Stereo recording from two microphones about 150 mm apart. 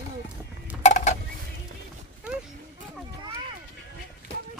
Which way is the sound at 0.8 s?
50° left (ahead or behind).